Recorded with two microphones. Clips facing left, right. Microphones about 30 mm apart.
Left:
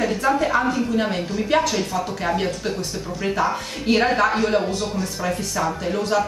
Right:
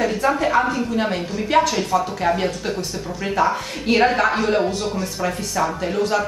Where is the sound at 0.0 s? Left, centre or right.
Centre.